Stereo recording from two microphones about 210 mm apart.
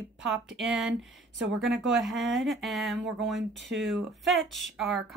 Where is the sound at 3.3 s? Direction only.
60° right (ahead or behind).